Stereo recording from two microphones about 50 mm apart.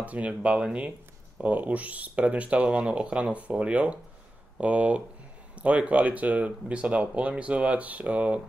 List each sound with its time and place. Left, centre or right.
0.0 s speech: right